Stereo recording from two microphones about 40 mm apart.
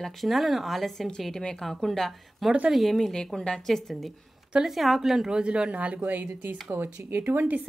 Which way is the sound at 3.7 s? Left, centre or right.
Centre.